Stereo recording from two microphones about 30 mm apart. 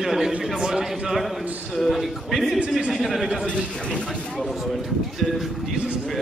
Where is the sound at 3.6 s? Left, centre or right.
Left.